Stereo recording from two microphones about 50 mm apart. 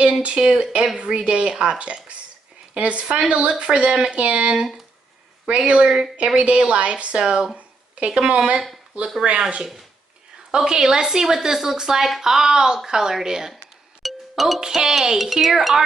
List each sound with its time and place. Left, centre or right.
0.2 s speech: right
7.5 s a sound: right
9.2 s a woman's voice: right
14.0 s music: centre
14.7 s a woman's voice: centre
15.1 s speech: centre